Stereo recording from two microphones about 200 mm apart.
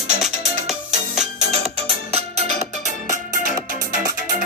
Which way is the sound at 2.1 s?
35° right (ahead or behind).